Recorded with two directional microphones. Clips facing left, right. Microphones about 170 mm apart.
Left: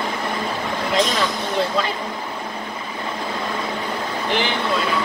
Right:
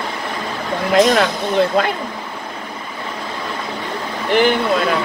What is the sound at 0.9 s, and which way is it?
Speech, 55° right (ahead or behind).